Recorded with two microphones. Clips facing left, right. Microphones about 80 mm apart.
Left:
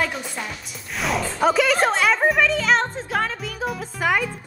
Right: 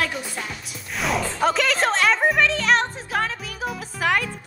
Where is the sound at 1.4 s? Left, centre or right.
Centre.